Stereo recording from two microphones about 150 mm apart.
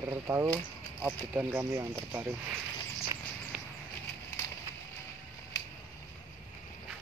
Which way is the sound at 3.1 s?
20° right (ahead or behind).